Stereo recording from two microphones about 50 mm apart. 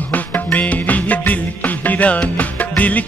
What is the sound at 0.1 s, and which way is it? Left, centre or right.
Music, left.